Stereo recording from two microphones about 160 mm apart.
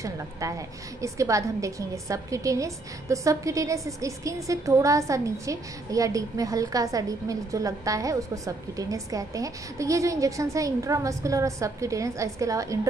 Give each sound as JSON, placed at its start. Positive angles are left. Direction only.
{"t": 0.0, "sound": "a woman's voice", "side_deg": -20}